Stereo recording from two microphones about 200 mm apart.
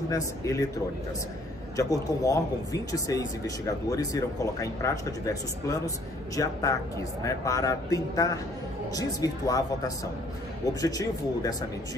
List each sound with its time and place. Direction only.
0.1 s speech: 15° left (ahead or behind)
1.8 s speech: 15° left (ahead or behind)